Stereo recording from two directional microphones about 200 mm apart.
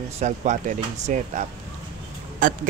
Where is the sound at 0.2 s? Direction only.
35° right (ahead or behind).